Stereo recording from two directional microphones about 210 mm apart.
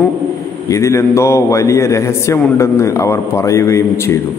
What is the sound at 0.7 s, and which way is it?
A man's voice, 15° left (ahead or behind).